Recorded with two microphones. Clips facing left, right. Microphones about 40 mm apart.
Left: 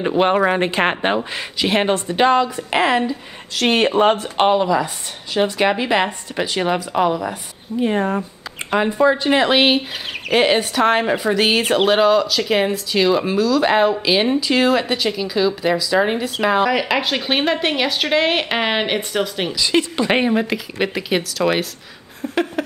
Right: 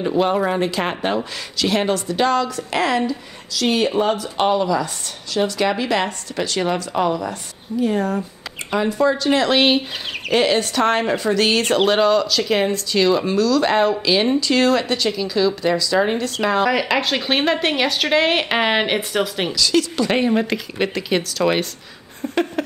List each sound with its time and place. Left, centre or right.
0.2 s a woman's voice: left
3.5 s speech: left
4.5 s a woman's voice: left
7.8 s a woman's voice: left; by 19.5 s centre
19.5 s a woman's voice: left
20.3 s speech: centre
22.2 s a sound: centre